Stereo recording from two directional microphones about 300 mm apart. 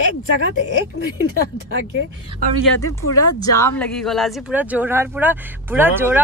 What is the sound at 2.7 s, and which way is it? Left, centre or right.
Speech, left.